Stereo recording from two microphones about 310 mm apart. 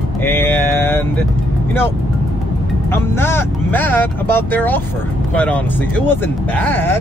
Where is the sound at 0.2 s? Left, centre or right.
Centre.